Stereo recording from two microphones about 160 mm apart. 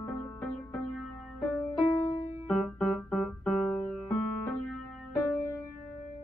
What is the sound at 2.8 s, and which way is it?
Keyboard, 5° left (ahead or behind).